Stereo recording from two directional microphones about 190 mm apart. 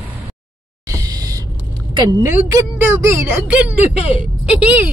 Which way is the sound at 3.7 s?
35° left (ahead or behind).